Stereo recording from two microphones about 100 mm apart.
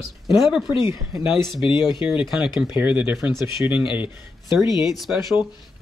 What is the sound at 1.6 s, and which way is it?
Speech, 50° left (ahead or behind).